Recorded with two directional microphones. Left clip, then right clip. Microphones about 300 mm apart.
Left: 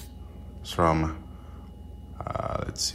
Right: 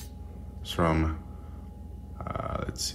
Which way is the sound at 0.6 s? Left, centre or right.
Centre.